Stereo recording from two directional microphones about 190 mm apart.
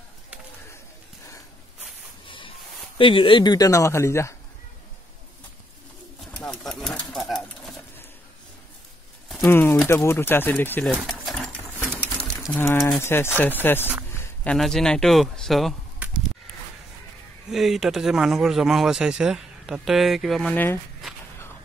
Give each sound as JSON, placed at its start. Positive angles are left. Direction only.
{"t": 2.2, "sound": "a sound", "side_deg": 25}
{"t": 3.0, "sound": "speech", "side_deg": 25}
{"t": 6.2, "sound": "pigeon", "side_deg": 5}
{"t": 9.3, "sound": "a sound", "side_deg": 10}
{"t": 9.8, "sound": "speech", "side_deg": 10}
{"t": 11.0, "sound": "pigeon", "side_deg": 0}
{"t": 12.6, "sound": "speech", "side_deg": 15}
{"t": 17.5, "sound": "speech", "side_deg": 0}